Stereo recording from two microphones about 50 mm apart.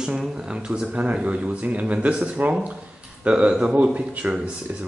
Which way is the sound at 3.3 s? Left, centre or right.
Right.